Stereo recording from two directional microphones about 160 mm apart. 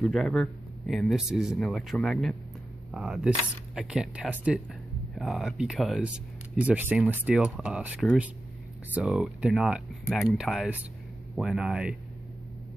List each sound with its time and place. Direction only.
0.0 s speech: centre (ahead or behind)